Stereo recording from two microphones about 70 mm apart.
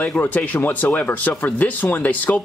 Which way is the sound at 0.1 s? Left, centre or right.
Left.